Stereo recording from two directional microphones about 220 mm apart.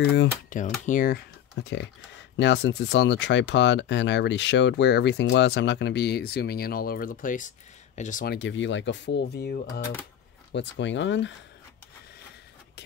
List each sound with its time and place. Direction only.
0.0 s speech: 55° left (ahead or behind)
0.5 s speech: 35° left (ahead or behind)
8.4 s speech: 55° left (ahead or behind)